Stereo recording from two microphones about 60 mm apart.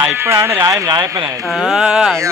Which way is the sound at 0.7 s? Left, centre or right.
Right.